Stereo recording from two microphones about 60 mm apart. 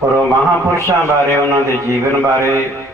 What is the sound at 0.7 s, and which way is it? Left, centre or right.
A man's voice, right.